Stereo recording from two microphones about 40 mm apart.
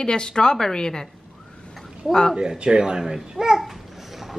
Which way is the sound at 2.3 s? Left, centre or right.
Centre.